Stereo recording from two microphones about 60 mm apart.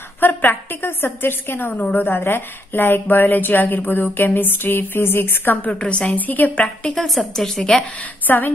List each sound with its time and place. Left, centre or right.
0.2 s a woman's voice: left
5.7 s a woman's voice: centre
6.8 s a woman's voice: centre
7.2 s a woman's voice: centre
8.3 s a woman's voice: left